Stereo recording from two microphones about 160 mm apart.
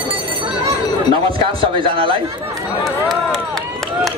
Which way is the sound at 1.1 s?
35° right (ahead or behind).